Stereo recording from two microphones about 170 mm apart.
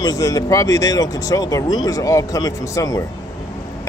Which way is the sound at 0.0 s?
20° left (ahead or behind).